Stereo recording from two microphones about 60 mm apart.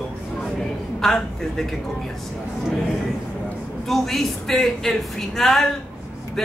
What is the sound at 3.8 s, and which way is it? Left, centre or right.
A woman's voice, centre.